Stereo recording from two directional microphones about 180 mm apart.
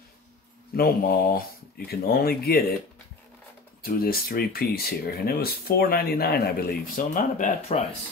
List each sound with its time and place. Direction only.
0.7 s speech: 55° left (ahead or behind)
3.8 s speech: 55° left (ahead or behind); by 7.8 s 40° left (ahead or behind)